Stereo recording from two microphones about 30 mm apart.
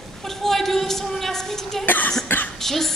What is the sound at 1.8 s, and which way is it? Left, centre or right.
Cough, left.